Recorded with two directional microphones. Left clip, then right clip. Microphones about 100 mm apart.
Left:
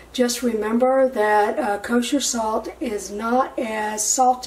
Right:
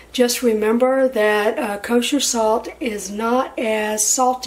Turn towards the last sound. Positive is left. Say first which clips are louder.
# even
turn(degrees=-25)  # may be behind; listen again after turning